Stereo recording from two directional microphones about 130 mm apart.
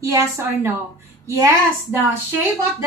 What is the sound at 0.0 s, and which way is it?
A woman's voice, 20° right (ahead or behind).